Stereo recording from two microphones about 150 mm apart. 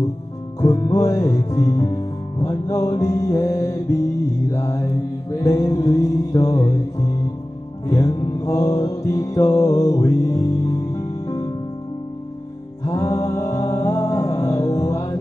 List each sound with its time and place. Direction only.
0.6 s music: 20° left (ahead or behind)
12.8 s music: 25° left (ahead or behind)